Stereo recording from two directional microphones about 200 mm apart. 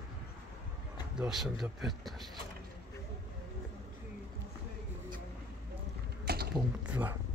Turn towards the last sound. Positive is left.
turn(degrees=-10)  # may be behind; listen again after turning